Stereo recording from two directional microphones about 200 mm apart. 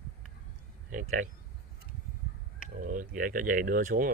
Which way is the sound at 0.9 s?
40° right (ahead or behind).